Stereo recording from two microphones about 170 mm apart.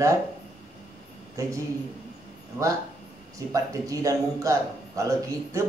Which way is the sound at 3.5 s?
20° right (ahead or behind).